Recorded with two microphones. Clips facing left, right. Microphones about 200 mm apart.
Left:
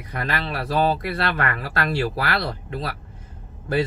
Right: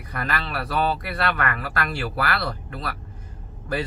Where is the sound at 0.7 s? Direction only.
25° left (ahead or behind).